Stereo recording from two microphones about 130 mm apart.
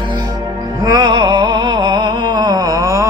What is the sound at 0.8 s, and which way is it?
Music, 35° right (ahead or behind).